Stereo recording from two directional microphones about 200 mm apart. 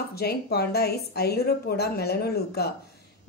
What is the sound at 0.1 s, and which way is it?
A woman's voice, 50° left (ahead or behind).